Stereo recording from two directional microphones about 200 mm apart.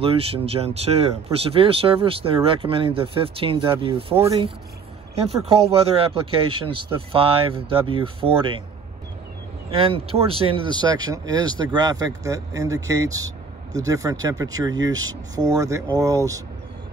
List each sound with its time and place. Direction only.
0.0 s speech: 30° right (ahead or behind)
9.7 s speech: 30° right (ahead or behind)